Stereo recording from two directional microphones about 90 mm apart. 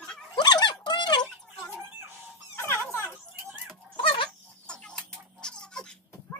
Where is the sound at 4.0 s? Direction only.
70° left (ahead or behind).